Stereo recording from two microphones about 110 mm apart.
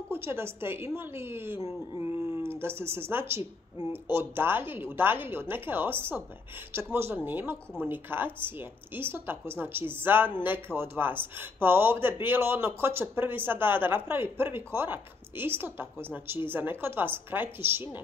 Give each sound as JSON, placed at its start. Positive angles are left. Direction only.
{"t": 0.1, "sound": "speech", "side_deg": -20}